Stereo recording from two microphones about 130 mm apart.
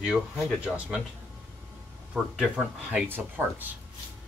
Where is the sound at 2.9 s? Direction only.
15° right (ahead or behind).